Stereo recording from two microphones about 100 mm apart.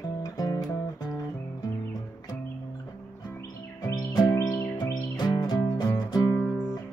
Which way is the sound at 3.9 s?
35° left (ahead or behind).